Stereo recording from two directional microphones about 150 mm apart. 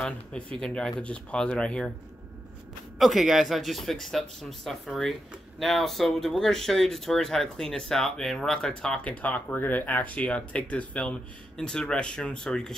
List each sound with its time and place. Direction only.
0.6 s speech: 5° left (ahead or behind)
3.0 s speech: centre (ahead or behind)